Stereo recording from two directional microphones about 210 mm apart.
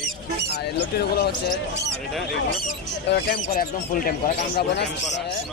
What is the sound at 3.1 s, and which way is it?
Speech, 45° left (ahead or behind).